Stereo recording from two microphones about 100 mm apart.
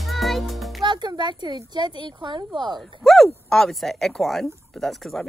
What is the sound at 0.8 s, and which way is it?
Music, 50° right (ahead or behind).